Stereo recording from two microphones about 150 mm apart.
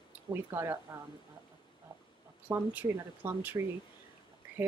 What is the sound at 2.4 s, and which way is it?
Speech, 15° right (ahead or behind).